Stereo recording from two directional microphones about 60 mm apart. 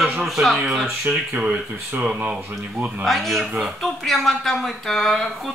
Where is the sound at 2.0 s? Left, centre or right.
Centre.